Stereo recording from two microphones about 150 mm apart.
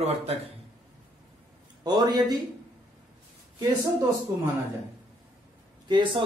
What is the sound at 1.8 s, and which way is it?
Speech, 25° right (ahead or behind).